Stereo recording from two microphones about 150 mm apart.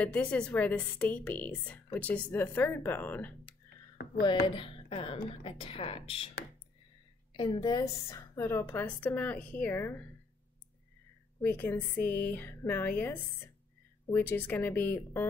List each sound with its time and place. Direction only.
0.0 s a woman's voice: 10° left (ahead or behind)
4.0 s a sound: 90° left
4.6 s a woman's voice: 35° left (ahead or behind)
7.3 s a woman's voice: 30° left (ahead or behind); by 10.0 s 15° left (ahead or behind)
11.4 s a woman's voice: 15° left (ahead or behind)